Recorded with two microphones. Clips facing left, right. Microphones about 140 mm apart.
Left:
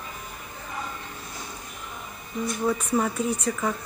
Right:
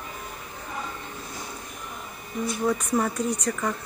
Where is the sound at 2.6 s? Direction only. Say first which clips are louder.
Even; 5° left (ahead or behind).